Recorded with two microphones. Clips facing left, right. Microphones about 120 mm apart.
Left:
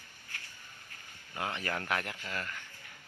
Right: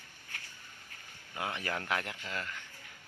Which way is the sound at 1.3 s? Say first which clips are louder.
Left 1 dB; 15° right (ahead or behind).